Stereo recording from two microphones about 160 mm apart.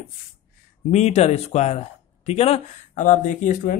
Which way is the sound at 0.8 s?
45° left (ahead or behind).